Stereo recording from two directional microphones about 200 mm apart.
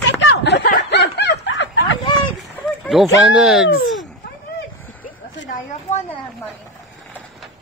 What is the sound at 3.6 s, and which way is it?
Speech, 75° left (ahead or behind).